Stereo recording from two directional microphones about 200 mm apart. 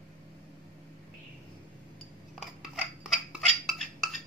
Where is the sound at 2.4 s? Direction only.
Centre (ahead or behind).